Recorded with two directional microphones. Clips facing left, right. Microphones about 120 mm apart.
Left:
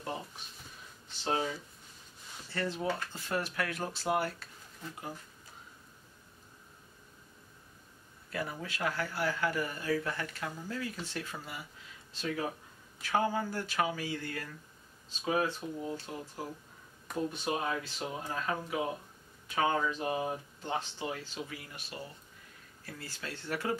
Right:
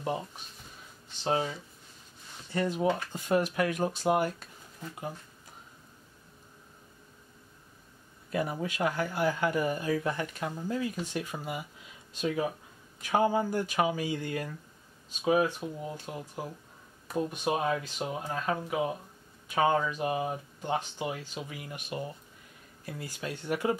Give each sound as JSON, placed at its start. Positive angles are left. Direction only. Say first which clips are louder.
{"t": 2.5, "sound": "speech", "louder": "right 6 dB", "side_deg": -15}
{"t": 8.3, "sound": "speech", "louder": "right 6 dB", "side_deg": -20}
{"t": 17.3, "sound": "speech", "louder": "right 6 dB", "side_deg": -15}